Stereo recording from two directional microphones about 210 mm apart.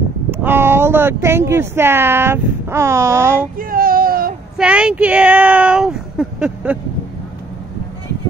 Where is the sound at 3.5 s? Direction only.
40° right (ahead or behind).